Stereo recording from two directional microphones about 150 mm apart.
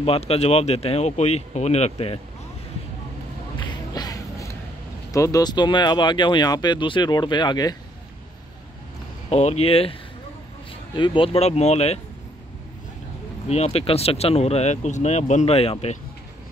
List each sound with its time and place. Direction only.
0.0 s speech: 40° left (ahead or behind)
3.9 s music: 25° left (ahead or behind)
5.1 s speech: 20° left (ahead or behind)
9.3 s speech: 45° left (ahead or behind)
11.0 s speech: 35° left (ahead or behind)
13.5 s speech: 45° left (ahead or behind)